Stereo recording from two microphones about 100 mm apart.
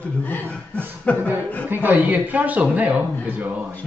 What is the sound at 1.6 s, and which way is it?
A man's voice, 20° right (ahead or behind).